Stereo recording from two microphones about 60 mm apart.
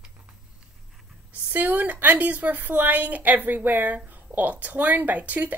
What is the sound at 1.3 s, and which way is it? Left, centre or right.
Speech, right.